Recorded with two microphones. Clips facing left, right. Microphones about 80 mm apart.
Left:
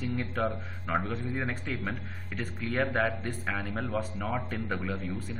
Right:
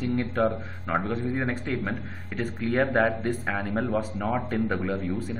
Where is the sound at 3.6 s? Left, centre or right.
Centre.